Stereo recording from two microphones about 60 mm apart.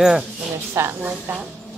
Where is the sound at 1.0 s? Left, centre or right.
Right.